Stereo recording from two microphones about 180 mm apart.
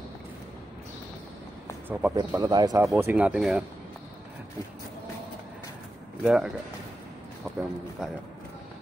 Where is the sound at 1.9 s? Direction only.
10° right (ahead or behind).